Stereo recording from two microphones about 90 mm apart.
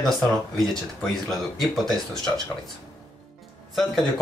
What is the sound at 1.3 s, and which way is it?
Speech, centre (ahead or behind).